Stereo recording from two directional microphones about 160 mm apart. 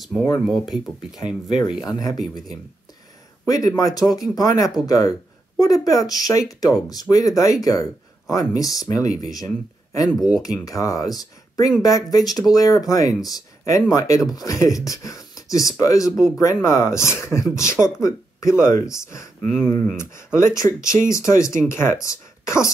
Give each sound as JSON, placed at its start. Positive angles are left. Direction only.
{"t": 0.0, "sound": "speech", "side_deg": 0}
{"t": 1.8, "sound": "speech", "side_deg": 25}
{"t": 3.4, "sound": "speech", "side_deg": 20}
{"t": 10.1, "sound": "speech", "side_deg": 0}
{"t": 10.4, "sound": "speech", "side_deg": 20}